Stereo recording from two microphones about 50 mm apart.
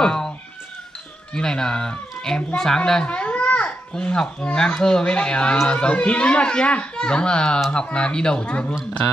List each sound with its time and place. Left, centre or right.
0.0 s chicken: centre
1.3 s a child's voice: centre